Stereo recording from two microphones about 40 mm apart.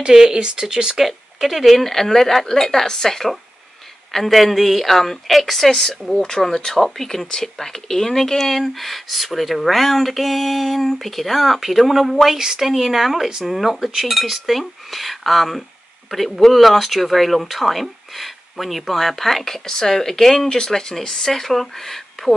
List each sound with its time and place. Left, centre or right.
0.0 s speech: centre
0.9 s speech: centre